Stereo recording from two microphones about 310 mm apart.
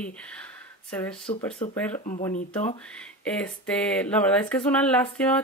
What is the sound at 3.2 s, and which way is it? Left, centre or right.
Speech, centre.